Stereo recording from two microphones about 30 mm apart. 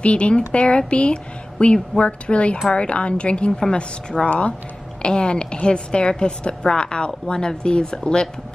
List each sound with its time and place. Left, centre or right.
0.0 s a woman's voice: left
4.3 s speech: left
5.0 s a woman's voice: left